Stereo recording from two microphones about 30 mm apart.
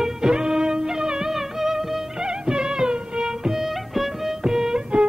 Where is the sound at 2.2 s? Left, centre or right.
Right.